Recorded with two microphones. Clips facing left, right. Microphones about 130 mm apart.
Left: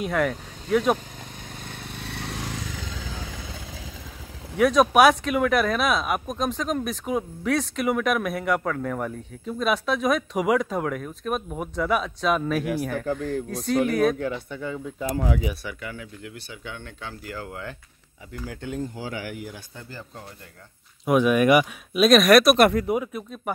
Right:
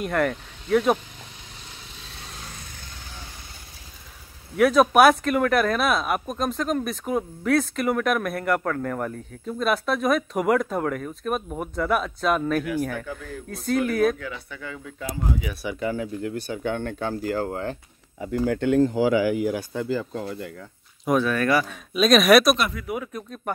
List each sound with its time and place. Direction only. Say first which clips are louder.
0.0 s speech: right 1 dB; centre (ahead or behind)
1.7 s vehicle: left 8 dB; 65° left (ahead or behind); by 2.9 s 90° left
4.6 s speech: right 1 dB; centre (ahead or behind)
14.2 s speech: left 6 dB; 25° left (ahead or behind)
15.1 s speech: left 2 dB; 75° left (ahead or behind)
15.8 s speech: right 10 dB; 35° right (ahead or behind)
18.4 s speech: right 12 dB; 65° right (ahead or behind); by 20.5 s 90° right
21.0 s speech: left 3 dB; 10° left (ahead or behind)
21.9 s speech: left 1 dB; centre (ahead or behind)